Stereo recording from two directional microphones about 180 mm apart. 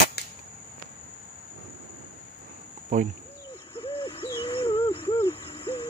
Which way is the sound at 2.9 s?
45° right (ahead or behind).